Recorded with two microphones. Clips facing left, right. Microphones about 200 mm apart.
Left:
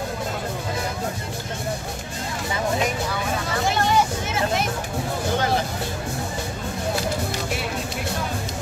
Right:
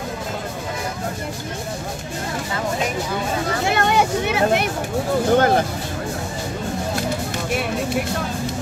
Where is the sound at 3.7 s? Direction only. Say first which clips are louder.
Right 2 dB; 60° right (ahead or behind).